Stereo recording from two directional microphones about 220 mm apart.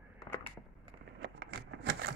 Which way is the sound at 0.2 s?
5° left (ahead or behind).